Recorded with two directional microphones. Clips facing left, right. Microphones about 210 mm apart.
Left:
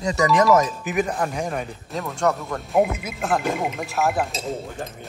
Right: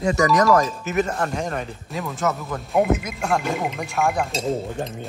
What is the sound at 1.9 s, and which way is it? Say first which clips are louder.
Speech: left 2 dB; centre (ahead or behind).